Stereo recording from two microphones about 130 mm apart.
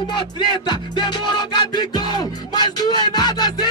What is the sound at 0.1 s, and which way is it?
Music, 35° left (ahead or behind).